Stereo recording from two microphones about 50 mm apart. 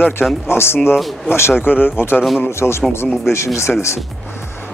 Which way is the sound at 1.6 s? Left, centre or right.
Left.